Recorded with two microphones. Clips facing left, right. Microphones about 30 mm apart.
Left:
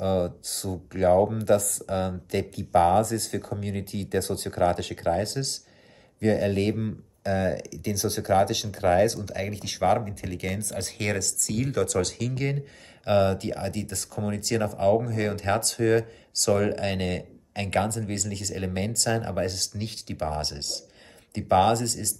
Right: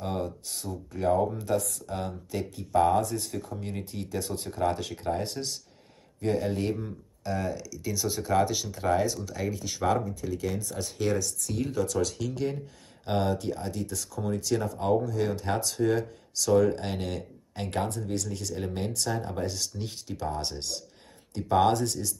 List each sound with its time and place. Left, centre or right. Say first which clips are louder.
0.0 s speech: left 7 dB; left
0.5 s speech: left 4 dB; left
1.9 s speech: left 6 dB; left
6.5 s speech: left 4 dB; left
7.8 s speech: left 2 dB; centre
8.6 s speech: left 5 dB; left
11.2 s speech: left 3 dB; left
13.0 s speech: left 5 dB; left